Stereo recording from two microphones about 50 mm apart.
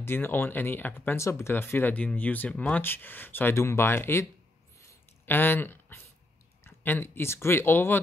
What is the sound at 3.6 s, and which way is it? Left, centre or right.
Speech, left.